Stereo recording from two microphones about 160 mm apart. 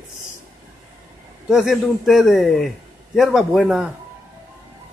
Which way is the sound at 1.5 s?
Centre (ahead or behind).